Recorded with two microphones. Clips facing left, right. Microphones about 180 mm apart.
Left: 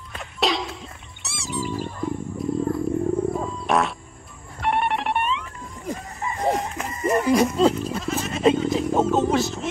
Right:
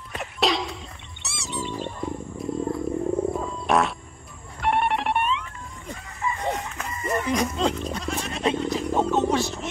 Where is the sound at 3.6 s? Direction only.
Centre (ahead or behind).